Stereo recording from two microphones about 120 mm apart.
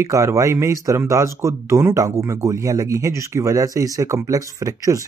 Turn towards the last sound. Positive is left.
turn(degrees=-25)  # may be behind; listen again after turning